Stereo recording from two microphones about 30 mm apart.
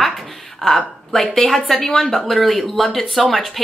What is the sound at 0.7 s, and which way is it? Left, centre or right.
A woman's voice, centre.